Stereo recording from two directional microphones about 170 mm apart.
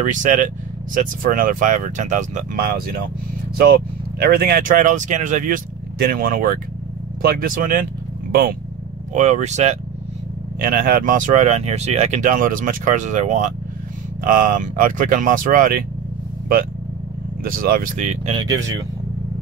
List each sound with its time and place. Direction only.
0.0 s speech: 50° right (ahead or behind)
4.2 s speech: 60° right (ahead or behind)
9.1 s speech: 45° right (ahead or behind)
10.6 s speech: 55° right (ahead or behind)
17.4 s speech: 60° right (ahead or behind); by 18.3 s 45° right (ahead or behind)
18.4 s speech: 20° right (ahead or behind)